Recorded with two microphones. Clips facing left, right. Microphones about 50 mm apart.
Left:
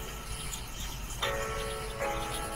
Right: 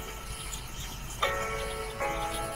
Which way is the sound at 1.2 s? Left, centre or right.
Right.